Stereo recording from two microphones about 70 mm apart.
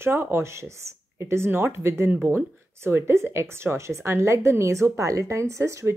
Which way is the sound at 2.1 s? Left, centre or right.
Right.